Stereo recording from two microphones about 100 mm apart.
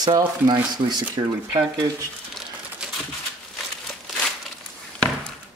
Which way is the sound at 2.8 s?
10° right (ahead or behind).